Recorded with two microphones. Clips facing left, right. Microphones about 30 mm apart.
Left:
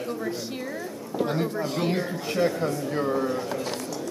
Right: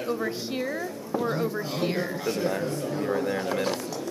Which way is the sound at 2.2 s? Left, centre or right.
Left.